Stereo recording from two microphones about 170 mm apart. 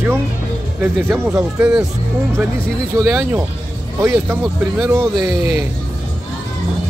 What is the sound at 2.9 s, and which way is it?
A man's voice, 15° right (ahead or behind).